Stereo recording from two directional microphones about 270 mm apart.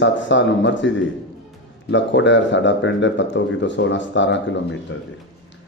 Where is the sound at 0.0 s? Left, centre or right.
Left.